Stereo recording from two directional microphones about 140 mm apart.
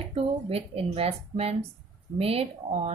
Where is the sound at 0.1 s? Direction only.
45° right (ahead or behind).